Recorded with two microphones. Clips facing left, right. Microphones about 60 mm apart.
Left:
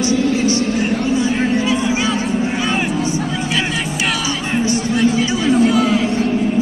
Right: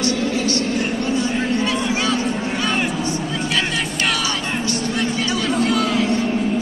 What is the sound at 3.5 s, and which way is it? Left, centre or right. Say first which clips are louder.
Music: even; centre.